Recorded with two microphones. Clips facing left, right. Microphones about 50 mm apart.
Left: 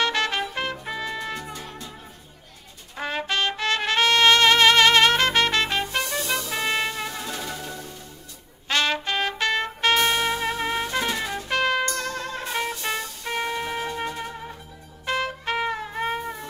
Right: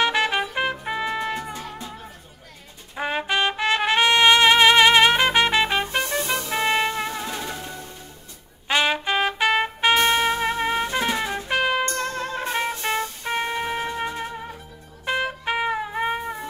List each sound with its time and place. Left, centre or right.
0.0 s trumpet: centre
1.7 s music: centre
3.0 s trumpet: centre
11.8 s music: right